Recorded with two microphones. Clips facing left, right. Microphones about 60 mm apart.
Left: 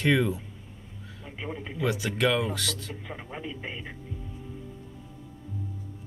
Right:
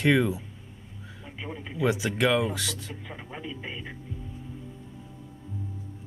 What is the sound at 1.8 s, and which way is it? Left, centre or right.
Speech, centre.